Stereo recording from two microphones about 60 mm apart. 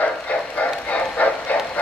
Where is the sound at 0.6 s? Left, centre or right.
Left.